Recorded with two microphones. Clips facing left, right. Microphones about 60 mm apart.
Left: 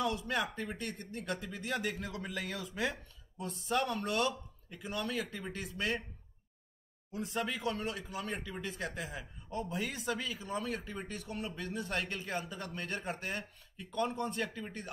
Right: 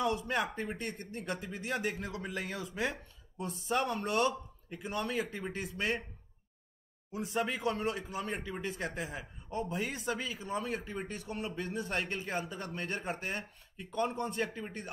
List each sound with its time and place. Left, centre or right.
0.0 s speech: centre
0.7 s speech: centre
7.1 s speech: centre
14.5 s speech: centre